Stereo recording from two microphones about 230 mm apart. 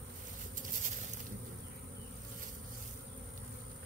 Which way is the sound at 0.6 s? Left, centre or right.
Right.